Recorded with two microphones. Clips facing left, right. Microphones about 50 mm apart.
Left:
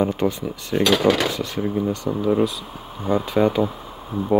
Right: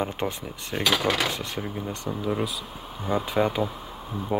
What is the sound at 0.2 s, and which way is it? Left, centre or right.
Speech, centre.